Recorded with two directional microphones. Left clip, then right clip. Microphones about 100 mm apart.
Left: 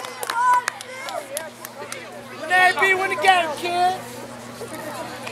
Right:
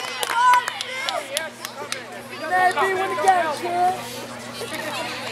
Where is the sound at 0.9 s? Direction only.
5° right (ahead or behind).